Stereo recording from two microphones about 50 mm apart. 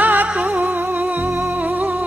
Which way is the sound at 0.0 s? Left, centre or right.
Right.